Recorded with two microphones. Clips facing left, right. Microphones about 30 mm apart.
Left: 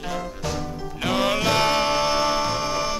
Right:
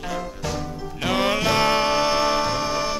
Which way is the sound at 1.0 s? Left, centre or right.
Centre.